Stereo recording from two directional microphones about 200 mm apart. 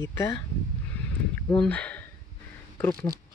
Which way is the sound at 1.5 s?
5° left (ahead or behind).